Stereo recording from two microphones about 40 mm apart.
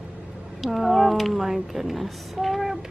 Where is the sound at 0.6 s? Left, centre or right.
Centre.